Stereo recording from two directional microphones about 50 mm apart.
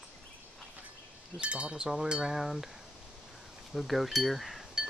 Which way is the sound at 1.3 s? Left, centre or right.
Right.